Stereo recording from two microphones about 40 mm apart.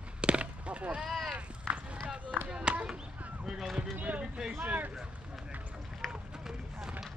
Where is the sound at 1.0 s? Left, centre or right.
Centre.